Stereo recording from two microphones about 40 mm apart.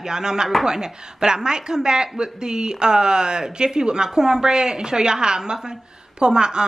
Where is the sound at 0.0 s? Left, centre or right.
Centre.